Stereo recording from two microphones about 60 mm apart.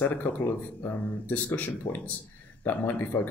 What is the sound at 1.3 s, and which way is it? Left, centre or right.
Speech, left.